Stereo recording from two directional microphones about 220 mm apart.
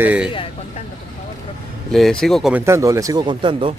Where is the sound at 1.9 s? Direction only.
Centre (ahead or behind); by 3.7 s 20° right (ahead or behind).